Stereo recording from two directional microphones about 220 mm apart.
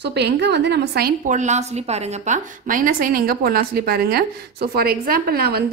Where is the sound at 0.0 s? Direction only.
50° right (ahead or behind).